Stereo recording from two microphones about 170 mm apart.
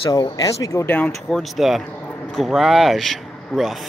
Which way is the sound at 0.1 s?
20° left (ahead or behind).